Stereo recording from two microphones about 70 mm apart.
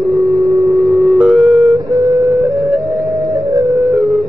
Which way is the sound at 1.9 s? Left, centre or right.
Right.